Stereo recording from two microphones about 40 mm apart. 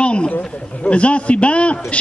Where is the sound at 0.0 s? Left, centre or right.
Left.